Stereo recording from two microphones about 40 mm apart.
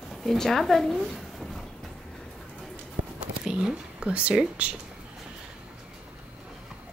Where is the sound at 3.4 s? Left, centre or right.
Centre.